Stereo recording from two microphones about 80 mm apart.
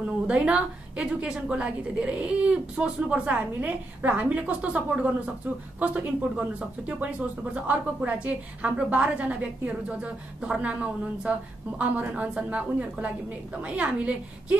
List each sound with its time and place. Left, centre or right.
0.0 s a woman's voice: centre